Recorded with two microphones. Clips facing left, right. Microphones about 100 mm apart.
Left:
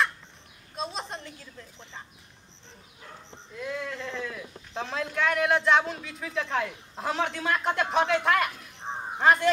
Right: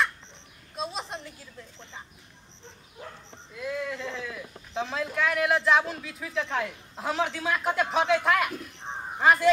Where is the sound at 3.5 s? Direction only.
Centre (ahead or behind).